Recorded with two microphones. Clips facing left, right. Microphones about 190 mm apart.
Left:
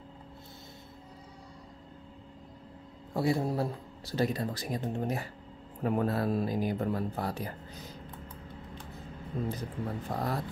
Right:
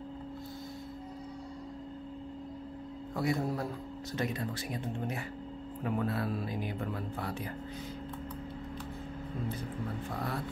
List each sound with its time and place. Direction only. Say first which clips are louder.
3.2 s speech: left 3 dB; 30° left (ahead or behind)
10.0 s speech: left 5 dB; 40° left (ahead or behind)